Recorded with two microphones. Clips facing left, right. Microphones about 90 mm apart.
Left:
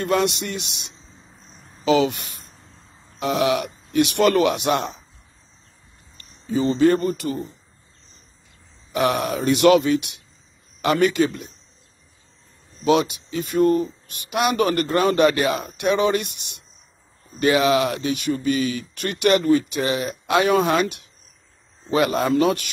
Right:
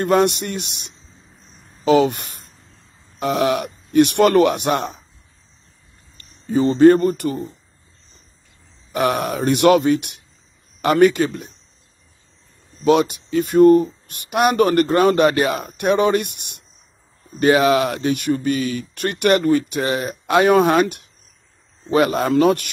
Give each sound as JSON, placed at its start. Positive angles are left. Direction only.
{"t": 0.0, "sound": "speech", "side_deg": -50}
{"t": 1.9, "sound": "speech", "side_deg": -45}
{"t": 6.1, "sound": "speech", "side_deg": -50}
{"t": 8.9, "sound": "speech", "side_deg": -45}
{"t": 12.8, "sound": "speech", "side_deg": -55}